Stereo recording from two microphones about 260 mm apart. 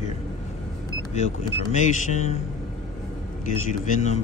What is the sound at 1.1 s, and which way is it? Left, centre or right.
Speech, left.